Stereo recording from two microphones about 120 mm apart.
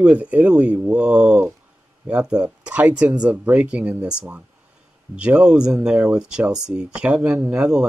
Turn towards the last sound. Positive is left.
turn(degrees=-5)  # may be behind; listen again after turning